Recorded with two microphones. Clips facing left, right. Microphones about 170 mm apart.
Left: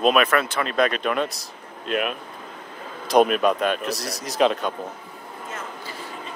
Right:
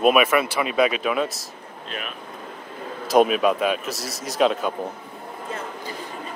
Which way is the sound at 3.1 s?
Centre (ahead or behind).